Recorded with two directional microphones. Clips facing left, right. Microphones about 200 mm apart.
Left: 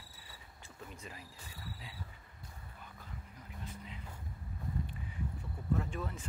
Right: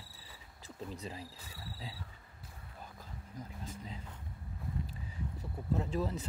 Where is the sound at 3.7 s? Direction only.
35° right (ahead or behind).